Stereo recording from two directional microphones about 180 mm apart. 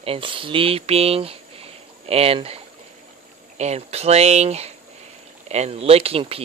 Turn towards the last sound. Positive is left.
turn(degrees=-35)  # may be behind; listen again after turning